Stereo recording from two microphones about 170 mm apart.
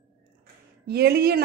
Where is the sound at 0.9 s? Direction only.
65° right (ahead or behind).